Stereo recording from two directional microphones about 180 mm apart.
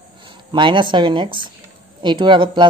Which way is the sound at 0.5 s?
25° right (ahead or behind).